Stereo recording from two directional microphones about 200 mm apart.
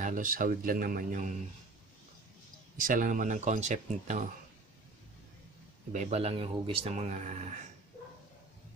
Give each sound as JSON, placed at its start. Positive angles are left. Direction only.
{"t": 0.0, "sound": "speech", "side_deg": -40}
{"t": 2.8, "sound": "speech", "side_deg": -40}
{"t": 5.9, "sound": "speech", "side_deg": -35}